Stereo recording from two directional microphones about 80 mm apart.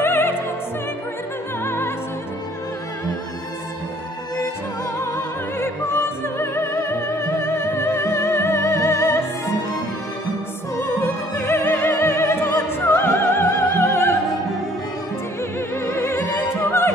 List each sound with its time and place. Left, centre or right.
0.0 s music: left
1.6 s music: left
5.0 s opera: left
10.8 s opera: left
15.8 s music: left